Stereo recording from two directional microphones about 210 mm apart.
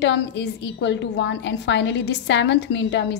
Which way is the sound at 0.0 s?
55° left (ahead or behind).